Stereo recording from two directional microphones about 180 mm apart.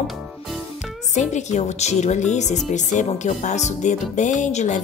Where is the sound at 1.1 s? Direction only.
40° left (ahead or behind).